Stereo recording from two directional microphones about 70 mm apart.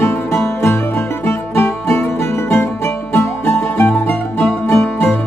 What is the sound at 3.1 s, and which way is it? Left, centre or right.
Music, left.